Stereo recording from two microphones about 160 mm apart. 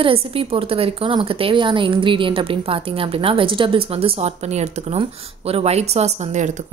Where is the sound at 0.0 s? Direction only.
35° right (ahead or behind).